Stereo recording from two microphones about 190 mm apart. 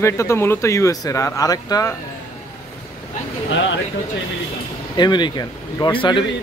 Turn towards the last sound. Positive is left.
turn(degrees=25)  # may be behind; listen again after turning